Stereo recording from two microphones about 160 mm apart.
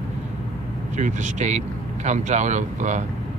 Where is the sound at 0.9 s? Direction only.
50° right (ahead or behind).